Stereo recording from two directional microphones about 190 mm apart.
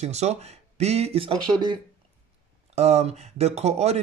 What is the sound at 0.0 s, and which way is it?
Speech, 35° right (ahead or behind).